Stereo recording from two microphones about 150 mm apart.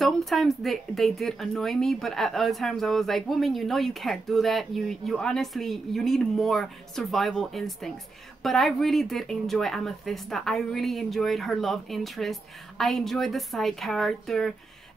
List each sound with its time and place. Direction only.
0.0 s speech: centre (ahead or behind)